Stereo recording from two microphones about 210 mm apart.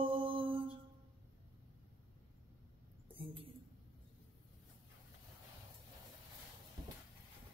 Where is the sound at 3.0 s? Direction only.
25° right (ahead or behind).